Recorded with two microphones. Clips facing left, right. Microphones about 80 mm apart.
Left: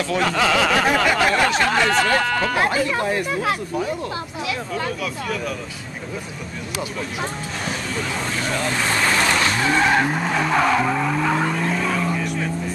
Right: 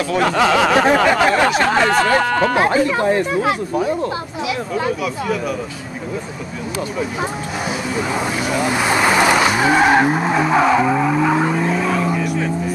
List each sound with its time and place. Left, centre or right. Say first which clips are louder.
0.1 s speech: right 5 dB; centre
4.5 s speech: right 6 dB; centre
7.9 s speech: right 6 dB; centre